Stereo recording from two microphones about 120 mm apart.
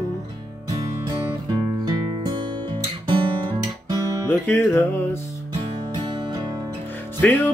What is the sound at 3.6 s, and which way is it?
Guitar, 30° right (ahead or behind).